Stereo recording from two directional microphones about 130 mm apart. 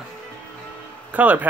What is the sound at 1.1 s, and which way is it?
Speech, 10° right (ahead or behind).